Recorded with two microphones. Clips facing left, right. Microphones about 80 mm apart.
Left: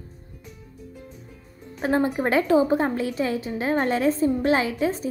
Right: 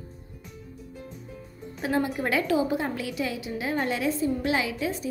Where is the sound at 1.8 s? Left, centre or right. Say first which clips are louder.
Left 4 dB; left.